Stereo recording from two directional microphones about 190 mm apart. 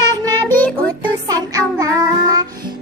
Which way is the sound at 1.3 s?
20° right (ahead or behind).